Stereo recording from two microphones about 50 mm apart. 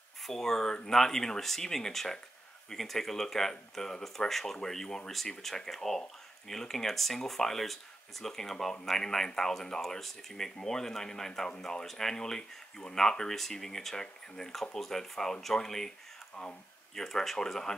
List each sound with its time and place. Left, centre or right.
0.2 s speech: centre
16.9 s speech: centre